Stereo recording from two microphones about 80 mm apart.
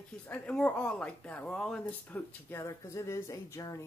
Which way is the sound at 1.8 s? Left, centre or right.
Left.